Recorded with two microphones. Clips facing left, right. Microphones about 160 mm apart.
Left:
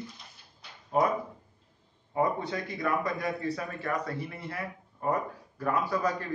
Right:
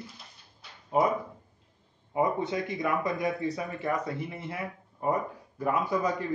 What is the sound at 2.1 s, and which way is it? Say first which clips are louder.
A man's voice: right 1 dB; 20° right (ahead or behind).